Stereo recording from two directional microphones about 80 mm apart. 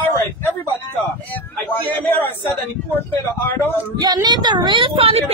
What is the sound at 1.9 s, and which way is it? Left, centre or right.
Speech, left.